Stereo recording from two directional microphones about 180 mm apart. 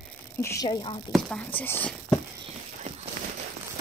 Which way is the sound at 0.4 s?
15° left (ahead or behind).